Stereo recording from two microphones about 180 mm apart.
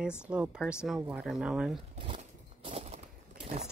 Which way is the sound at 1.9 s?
30° right (ahead or behind).